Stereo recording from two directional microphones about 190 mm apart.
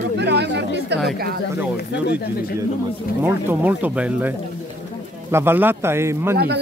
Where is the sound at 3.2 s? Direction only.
10° right (ahead or behind).